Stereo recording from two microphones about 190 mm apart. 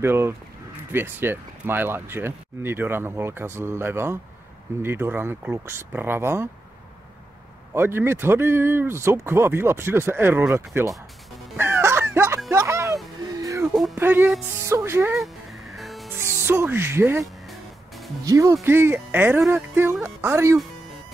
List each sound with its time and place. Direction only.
0.0 s speech: 10° right (ahead or behind)
7.7 s speech: 10° right (ahead or behind)
11.5 s music: 10° right (ahead or behind)
14.9 s speech: 10° right (ahead or behind)
15.1 s music: centre (ahead or behind)
16.2 s speech: 10° right (ahead or behind)
17.2 s music: centre (ahead or behind)
18.2 s speech: 15° right (ahead or behind)